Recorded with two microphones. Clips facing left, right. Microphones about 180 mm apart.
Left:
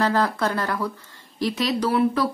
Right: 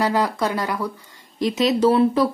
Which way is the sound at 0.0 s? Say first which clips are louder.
Right 1 dB; 15° right (ahead or behind).